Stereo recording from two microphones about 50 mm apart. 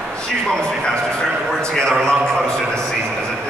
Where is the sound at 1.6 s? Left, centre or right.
Centre.